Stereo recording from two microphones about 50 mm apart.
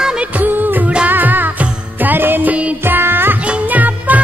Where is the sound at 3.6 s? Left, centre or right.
Right.